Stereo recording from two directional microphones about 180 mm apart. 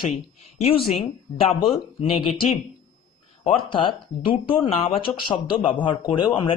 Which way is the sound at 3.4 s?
30° left (ahead or behind).